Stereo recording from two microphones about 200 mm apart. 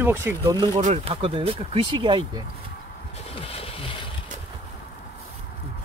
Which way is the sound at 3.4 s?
30° left (ahead or behind).